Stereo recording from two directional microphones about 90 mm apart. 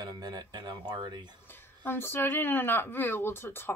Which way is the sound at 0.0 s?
50° right (ahead or behind).